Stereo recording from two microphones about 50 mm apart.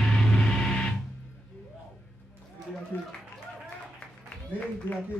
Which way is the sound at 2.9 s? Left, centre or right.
Left.